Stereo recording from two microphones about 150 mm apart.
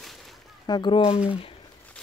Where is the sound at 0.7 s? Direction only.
30° left (ahead or behind).